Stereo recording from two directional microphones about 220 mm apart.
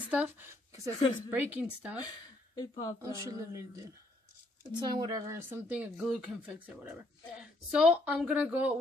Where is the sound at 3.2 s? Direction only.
15° right (ahead or behind).